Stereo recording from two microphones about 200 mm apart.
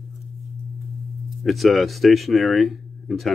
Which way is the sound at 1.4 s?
Centre (ahead or behind).